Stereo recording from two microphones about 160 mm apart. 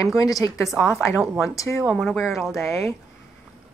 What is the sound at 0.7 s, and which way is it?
A woman's voice, centre (ahead or behind).